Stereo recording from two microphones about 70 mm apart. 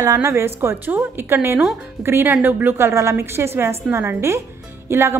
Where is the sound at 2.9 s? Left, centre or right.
Right.